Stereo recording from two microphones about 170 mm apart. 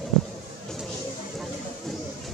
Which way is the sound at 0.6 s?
Centre (ahead or behind).